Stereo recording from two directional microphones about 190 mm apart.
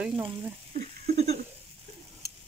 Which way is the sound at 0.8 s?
35° right (ahead or behind).